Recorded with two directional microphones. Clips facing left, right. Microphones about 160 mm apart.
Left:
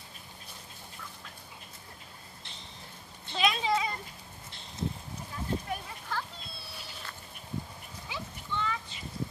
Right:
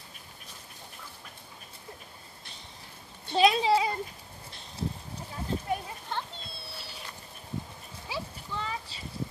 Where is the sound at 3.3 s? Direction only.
30° right (ahead or behind).